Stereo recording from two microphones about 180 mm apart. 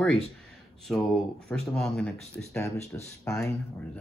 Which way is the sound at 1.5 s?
5° left (ahead or behind).